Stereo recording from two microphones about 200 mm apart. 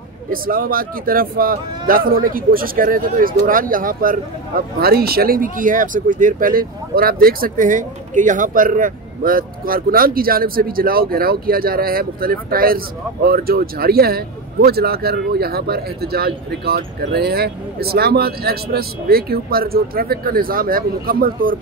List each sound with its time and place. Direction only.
0.3 s speech: 45° right (ahead or behind)